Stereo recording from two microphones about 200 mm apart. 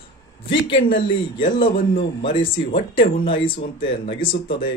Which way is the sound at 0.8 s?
40° left (ahead or behind).